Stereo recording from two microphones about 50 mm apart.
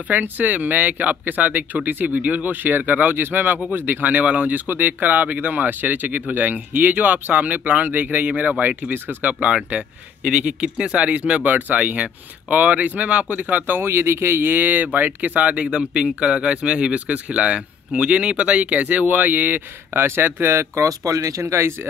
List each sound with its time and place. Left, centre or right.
0.1 s speech: right
9.3 s speech: right